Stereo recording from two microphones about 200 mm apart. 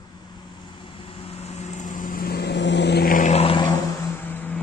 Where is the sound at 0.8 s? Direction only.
25° left (ahead or behind).